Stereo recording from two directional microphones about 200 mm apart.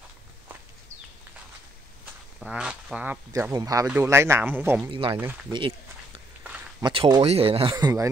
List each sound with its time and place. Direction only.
2.4 s speech: 5° right (ahead or behind)
3.5 s speech: 20° right (ahead or behind)
6.8 s speech: 25° right (ahead or behind)
7.7 s speech: 15° right (ahead or behind)